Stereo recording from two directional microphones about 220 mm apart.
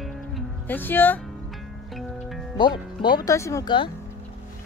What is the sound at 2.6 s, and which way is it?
Speech, 20° left (ahead or behind).